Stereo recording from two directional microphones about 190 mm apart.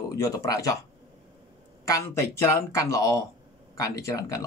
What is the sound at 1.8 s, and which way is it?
Speech, 15° left (ahead or behind).